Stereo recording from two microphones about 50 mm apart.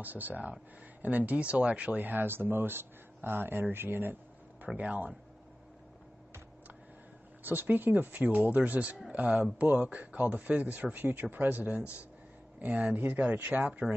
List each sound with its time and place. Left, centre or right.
0.0 s speech: right
4.7 s speech: right
7.4 s speech: right